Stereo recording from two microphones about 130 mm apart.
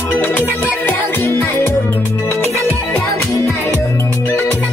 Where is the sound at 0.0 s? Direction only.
15° left (ahead or behind).